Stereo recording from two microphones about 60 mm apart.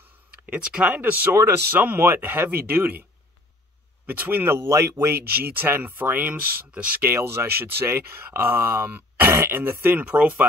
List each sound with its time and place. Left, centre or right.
0.5 s speech: centre
1.3 s speech: right
4.0 s speech: right
4.6 s speech: right
5.3 s speech: right
7.0 s speech: right